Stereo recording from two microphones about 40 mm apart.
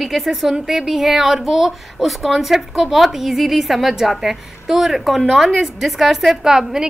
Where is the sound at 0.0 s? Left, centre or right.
Centre.